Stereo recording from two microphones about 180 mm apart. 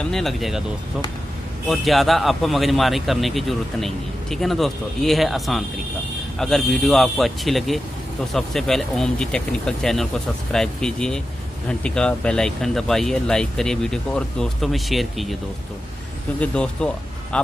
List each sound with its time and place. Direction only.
0.0 s a man's voice: centre (ahead or behind)
1.7 s a man's voice: centre (ahead or behind)
16.3 s speech: 5° left (ahead or behind)